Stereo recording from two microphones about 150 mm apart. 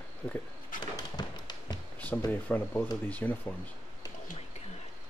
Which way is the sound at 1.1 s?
30° left (ahead or behind).